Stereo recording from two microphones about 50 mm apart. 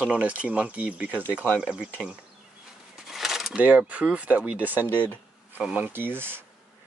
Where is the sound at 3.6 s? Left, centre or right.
Right.